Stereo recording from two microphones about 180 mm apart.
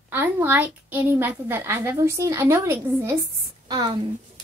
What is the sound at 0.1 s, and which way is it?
A woman's voice, 10° right (ahead or behind).